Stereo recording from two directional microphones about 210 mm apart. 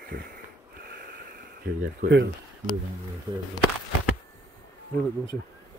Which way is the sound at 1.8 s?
55° right (ahead or behind).